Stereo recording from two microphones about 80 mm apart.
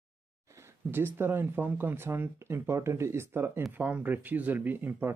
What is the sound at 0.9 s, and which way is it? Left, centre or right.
Speech, right.